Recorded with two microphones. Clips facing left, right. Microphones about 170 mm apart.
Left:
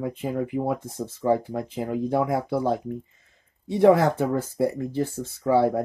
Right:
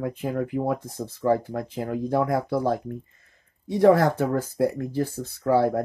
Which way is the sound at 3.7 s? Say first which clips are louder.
Even; 15° left (ahead or behind).